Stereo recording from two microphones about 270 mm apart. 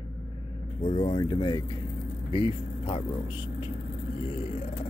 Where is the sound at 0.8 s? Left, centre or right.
Centre.